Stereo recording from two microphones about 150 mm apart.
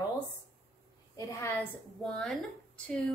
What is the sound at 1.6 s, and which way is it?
Speech, 5° left (ahead or behind).